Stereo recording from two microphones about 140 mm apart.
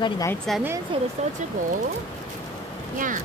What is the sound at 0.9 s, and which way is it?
Speech, 40° right (ahead or behind).